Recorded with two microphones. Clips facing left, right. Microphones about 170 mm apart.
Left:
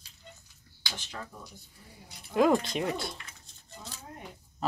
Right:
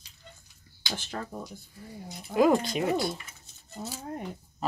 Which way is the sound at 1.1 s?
50° right (ahead or behind).